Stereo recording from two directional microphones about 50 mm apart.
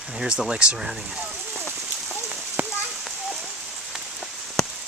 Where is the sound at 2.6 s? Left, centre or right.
Right.